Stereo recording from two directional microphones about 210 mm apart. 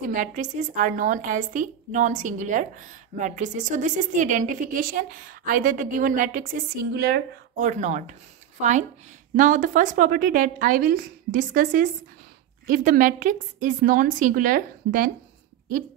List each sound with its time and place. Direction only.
0.0 s a woman's voice: 40° right (ahead or behind)